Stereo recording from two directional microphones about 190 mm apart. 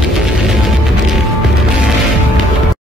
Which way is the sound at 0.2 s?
Centre (ahead or behind).